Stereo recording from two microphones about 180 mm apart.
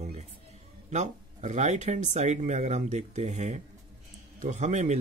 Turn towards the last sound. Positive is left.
turn(degrees=-40)  # may be behind; listen again after turning